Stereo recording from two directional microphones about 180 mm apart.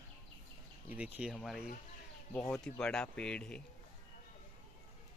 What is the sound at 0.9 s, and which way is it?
Speech, 5° right (ahead or behind).